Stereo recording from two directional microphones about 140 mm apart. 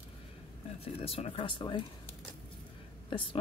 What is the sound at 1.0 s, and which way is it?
Speech, 45° left (ahead or behind).